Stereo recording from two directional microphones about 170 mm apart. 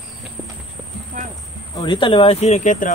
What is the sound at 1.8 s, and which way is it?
Speech, 30° left (ahead or behind).